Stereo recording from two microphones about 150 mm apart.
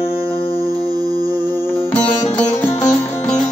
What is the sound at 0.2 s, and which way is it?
Music, 40° left (ahead or behind).